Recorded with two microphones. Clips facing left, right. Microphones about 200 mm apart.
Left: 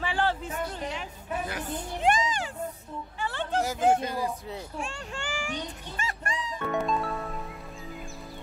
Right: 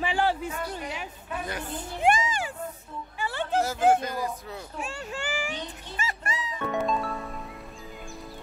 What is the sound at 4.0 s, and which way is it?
Speech, 25° left (ahead or behind).